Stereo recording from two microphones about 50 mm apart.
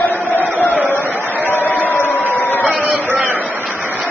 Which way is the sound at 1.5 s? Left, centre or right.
Left.